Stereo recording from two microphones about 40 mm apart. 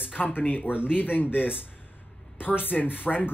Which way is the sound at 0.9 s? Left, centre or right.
Left.